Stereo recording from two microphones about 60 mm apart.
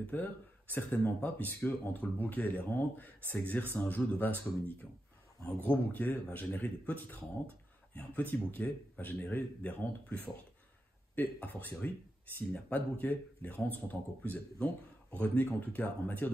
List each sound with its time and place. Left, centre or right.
0.0 s speech: left
5.6 s speech: left
11.4 s speech: left
14.6 s speech: left